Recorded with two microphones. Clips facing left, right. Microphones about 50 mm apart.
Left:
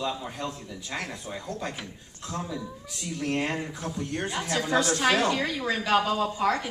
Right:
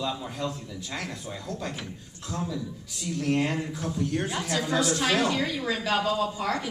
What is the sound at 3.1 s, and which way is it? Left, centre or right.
Speech, centre.